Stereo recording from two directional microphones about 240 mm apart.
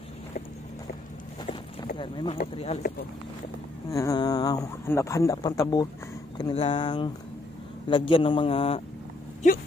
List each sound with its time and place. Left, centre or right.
2.0 s a man's voice: left
3.9 s a man's voice: centre